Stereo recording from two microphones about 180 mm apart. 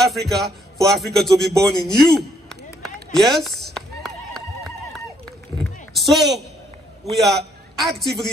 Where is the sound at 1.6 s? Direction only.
5° left (ahead or behind).